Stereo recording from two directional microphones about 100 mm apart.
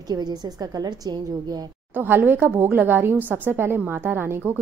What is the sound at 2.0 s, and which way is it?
A woman's voice, 20° right (ahead or behind).